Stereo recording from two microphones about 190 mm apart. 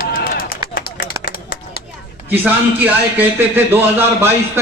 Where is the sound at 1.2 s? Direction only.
50° left (ahead or behind).